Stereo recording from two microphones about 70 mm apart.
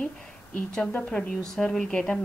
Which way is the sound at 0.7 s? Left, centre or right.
Centre.